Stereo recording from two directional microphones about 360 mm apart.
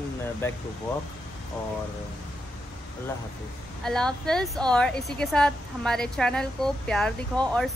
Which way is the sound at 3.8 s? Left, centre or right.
Centre.